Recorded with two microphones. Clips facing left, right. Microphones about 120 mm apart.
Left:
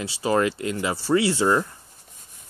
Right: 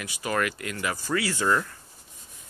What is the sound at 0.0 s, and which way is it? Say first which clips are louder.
Speech: left 6 dB; 30° left (ahead or behind).